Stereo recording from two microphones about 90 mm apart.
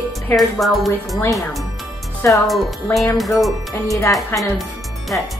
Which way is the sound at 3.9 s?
35° left (ahead or behind).